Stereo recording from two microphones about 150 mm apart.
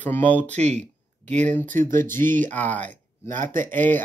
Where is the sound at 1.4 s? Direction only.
10° left (ahead or behind).